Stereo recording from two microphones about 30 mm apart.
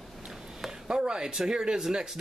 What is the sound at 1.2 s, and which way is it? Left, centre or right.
Speech, centre.